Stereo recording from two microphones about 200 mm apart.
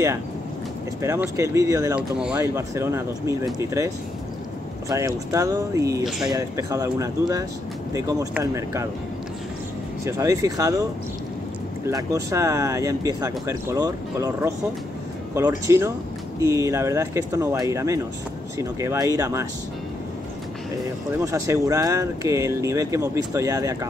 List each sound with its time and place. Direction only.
1.0 s speech: 15° right (ahead or behind)
2.1 s speech: 5° right (ahead or behind)
4.8 s speech: 15° right (ahead or behind)
10.0 s speech: 15° right (ahead or behind)
21.2 s speech: 15° right (ahead or behind)